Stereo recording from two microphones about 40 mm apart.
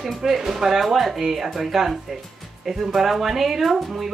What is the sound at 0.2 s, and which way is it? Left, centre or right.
Speech, centre.